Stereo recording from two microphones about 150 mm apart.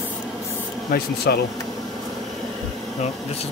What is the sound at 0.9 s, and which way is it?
Speech, 90° left.